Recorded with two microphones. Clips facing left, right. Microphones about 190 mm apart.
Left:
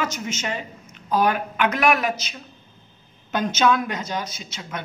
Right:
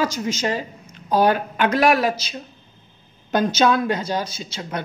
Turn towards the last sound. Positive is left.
turn(degrees=-30)  # may be behind; listen again after turning